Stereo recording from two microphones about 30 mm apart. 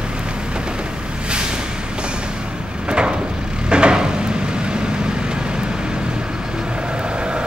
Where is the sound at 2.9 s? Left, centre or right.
Right.